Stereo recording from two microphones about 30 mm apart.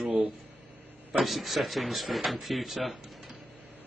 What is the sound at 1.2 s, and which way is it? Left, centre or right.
Speech, centre.